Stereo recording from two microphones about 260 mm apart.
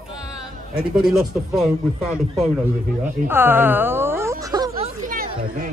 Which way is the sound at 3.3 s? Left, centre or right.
Centre.